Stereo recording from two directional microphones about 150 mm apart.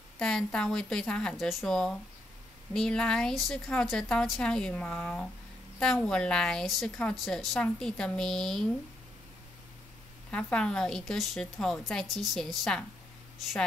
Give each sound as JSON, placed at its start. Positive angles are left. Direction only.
{"t": 0.2, "sound": "a woman's voice", "side_deg": 5}
{"t": 10.3, "sound": "a woman's voice", "side_deg": 5}